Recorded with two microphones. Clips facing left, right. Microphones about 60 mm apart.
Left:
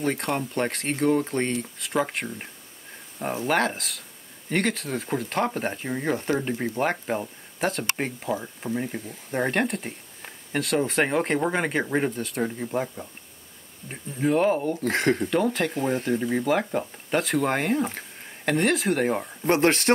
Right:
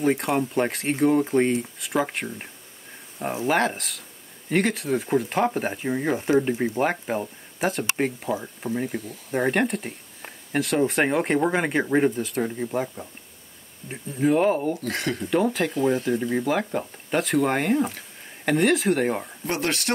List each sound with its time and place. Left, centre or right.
0.0 s speech: centre
14.8 s speech: left
15.2 s speech: centre
19.4 s speech: left